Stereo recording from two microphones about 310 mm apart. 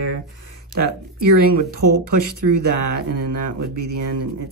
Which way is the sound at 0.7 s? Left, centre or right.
Right.